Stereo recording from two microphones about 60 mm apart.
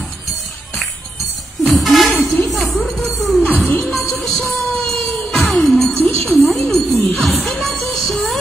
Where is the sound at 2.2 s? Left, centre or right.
Centre.